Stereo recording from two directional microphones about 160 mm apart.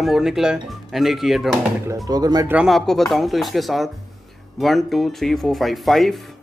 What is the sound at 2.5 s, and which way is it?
Speech, centre (ahead or behind).